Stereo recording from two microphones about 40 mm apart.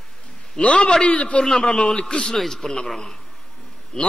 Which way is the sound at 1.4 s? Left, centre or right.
Centre.